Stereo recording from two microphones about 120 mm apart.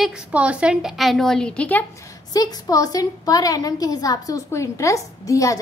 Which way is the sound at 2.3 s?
30° left (ahead or behind).